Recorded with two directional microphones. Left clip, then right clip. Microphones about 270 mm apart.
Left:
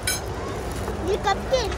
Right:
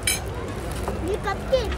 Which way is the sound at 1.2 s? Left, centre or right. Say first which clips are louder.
Left 1 dB; left.